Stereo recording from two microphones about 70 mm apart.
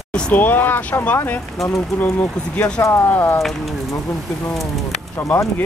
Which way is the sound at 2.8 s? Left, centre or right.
Left.